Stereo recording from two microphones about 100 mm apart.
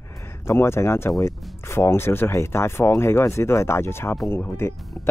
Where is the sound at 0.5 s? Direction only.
25° left (ahead or behind).